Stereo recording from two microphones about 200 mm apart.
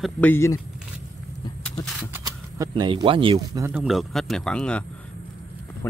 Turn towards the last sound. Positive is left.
turn(degrees=5)  # may be behind; listen again after turning